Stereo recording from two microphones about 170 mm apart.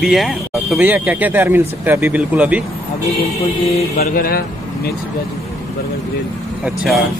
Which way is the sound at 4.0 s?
65° left (ahead or behind).